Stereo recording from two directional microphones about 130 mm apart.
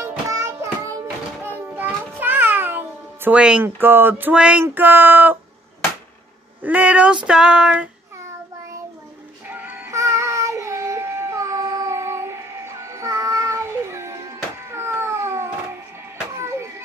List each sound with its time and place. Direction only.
0.0 s child singing: 20° right (ahead or behind)
1.0 s a sound: 15° right (ahead or behind)
6.6 s a sound: 10° right (ahead or behind)
9.5 s music: 15° right (ahead or behind)
9.9 s child singing: 25° right (ahead or behind)
14.7 s cat: 20° right (ahead or behind)
16.3 s music: 20° right (ahead or behind)